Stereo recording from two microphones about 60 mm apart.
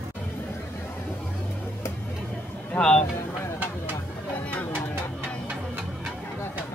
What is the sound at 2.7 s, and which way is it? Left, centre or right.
Speech, left.